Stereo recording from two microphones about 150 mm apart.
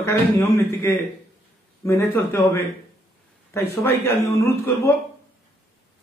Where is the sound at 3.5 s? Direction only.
15° left (ahead or behind).